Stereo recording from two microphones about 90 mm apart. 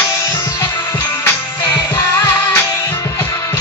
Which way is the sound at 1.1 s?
30° left (ahead or behind).